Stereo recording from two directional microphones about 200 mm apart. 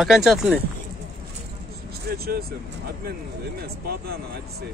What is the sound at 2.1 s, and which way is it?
Speech, 55° right (ahead or behind).